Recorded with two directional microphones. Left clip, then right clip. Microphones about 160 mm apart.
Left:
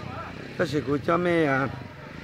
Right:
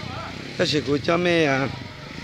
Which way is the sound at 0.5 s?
Centre (ahead or behind).